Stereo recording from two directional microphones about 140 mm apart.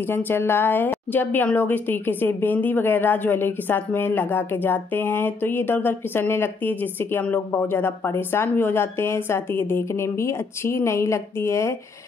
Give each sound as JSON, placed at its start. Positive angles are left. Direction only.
{"t": 0.0, "sound": "a woman's voice", "side_deg": 15}